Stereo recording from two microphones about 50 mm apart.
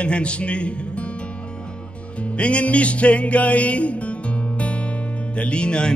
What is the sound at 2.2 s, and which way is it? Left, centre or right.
Music, left.